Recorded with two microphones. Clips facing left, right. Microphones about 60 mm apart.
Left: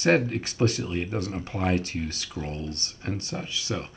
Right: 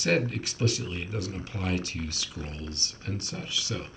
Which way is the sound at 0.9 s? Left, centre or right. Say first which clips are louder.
Left 5 dB; left.